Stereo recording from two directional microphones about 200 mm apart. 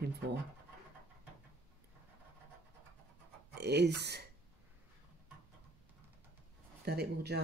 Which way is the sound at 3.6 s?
55° right (ahead or behind).